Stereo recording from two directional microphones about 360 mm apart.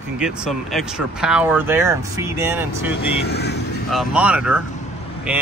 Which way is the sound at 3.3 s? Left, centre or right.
Left.